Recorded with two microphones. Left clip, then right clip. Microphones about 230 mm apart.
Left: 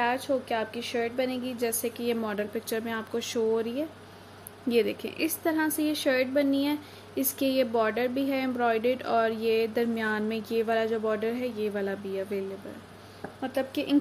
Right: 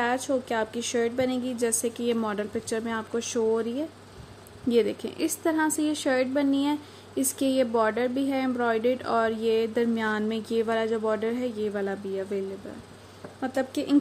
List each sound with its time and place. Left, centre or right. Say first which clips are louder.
0.5 s a woman's voice: right 2 dB; right
13.4 s a woman's voice: right 2 dB; right